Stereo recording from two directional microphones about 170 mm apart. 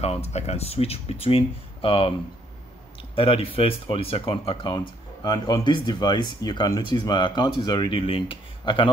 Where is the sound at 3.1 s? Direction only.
35° left (ahead or behind).